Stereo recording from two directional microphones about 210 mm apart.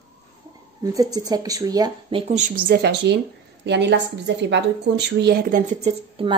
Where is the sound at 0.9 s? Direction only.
15° right (ahead or behind); by 2.5 s 35° right (ahead or behind).